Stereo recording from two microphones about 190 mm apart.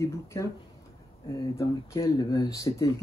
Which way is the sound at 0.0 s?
15° left (ahead or behind).